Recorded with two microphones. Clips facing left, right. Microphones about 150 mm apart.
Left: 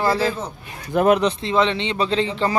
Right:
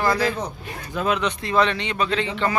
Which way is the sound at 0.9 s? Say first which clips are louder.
Left 8 dB; 55° left (ahead or behind).